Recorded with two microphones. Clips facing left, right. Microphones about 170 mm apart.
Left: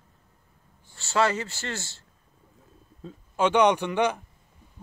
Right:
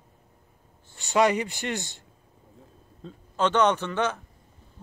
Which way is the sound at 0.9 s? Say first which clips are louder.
Right 3 dB; 15° right (ahead or behind).